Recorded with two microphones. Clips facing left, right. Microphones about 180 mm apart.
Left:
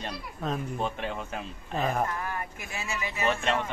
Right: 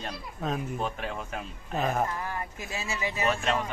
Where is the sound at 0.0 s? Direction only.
Centre (ahead or behind).